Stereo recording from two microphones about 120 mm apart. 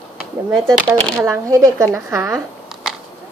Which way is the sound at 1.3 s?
25° right (ahead or behind).